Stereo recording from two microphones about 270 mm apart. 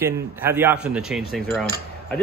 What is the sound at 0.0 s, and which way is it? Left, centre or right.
Speech, centre.